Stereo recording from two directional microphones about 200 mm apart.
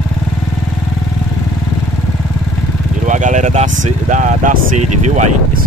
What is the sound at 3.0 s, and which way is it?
Speech, 40° right (ahead or behind).